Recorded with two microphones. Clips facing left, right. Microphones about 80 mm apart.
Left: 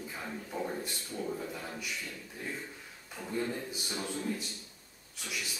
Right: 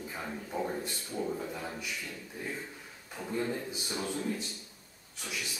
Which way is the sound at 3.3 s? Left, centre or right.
Centre.